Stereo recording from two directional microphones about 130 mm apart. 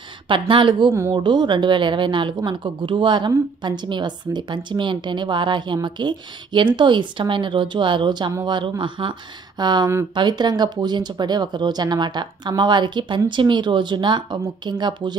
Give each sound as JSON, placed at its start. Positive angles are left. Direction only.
{"t": 0.3, "sound": "a woman's voice", "side_deg": -40}